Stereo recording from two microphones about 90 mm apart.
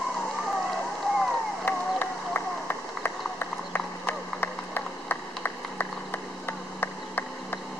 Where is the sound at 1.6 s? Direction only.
25° left (ahead or behind).